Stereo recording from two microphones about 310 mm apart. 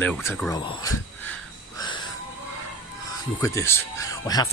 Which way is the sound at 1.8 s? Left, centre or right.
Centre.